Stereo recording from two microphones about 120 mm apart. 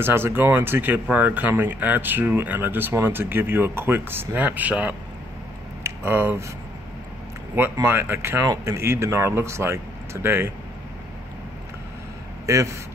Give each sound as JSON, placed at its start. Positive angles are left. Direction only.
{"t": 0.0, "sound": "speech", "side_deg": -20}
{"t": 7.7, "sound": "speech", "side_deg": -20}